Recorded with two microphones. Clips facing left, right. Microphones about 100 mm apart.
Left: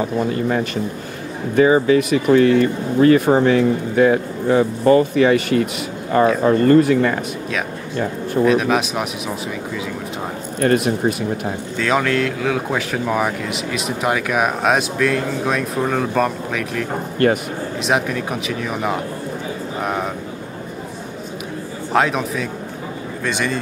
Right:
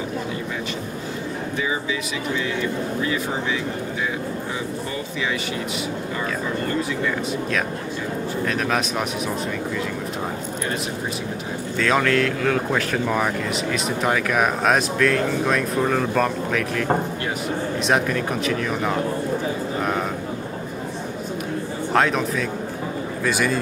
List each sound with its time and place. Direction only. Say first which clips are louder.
1.6 s speech: left 15 dB; 55° left (ahead or behind)
8.5 s speech: left 7 dB; 5° left (ahead or behind)
10.6 s speech: left 14 dB; 60° left (ahead or behind)
11.8 s speech: left 1 dB; centre (ahead or behind)
17.2 s speech: left 12 dB; 60° left (ahead or behind)
17.8 s speech: left 2 dB; 5° left (ahead or behind)
21.9 s speech: left 2 dB; 5° left (ahead or behind)